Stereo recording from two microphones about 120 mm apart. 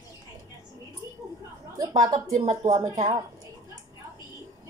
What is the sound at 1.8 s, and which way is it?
A woman's voice, 30° right (ahead or behind).